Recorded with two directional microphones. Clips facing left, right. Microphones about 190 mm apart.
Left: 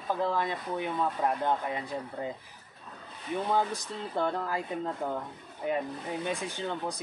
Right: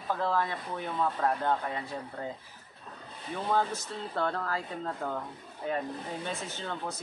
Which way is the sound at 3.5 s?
15° left (ahead or behind).